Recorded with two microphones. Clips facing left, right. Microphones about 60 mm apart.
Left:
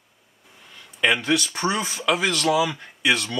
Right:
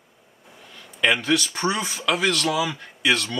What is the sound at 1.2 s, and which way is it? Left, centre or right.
Speech, left.